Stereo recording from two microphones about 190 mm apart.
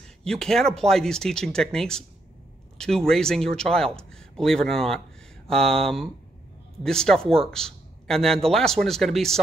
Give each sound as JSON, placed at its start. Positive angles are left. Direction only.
{"t": 0.2, "sound": "a man's voice", "side_deg": 5}